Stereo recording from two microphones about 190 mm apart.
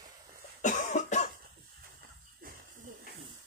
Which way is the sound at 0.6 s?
40° left (ahead or behind).